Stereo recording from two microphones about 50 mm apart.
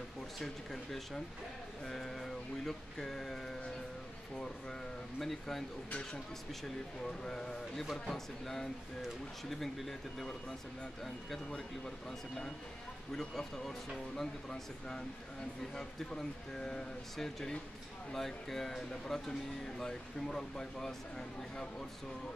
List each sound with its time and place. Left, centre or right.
0.4 s speech: centre
5.2 s speech: centre
7.2 s speech: centre
13.1 s speech: centre